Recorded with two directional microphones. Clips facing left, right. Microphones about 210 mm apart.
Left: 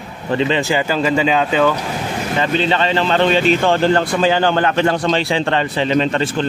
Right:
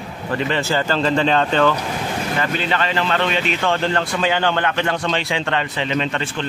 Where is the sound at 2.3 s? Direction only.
25° left (ahead or behind).